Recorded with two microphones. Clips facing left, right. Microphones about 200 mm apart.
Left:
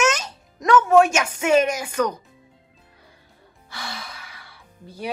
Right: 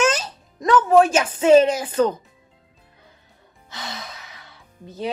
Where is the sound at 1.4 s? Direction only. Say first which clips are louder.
Right 6 dB; 30° right (ahead or behind).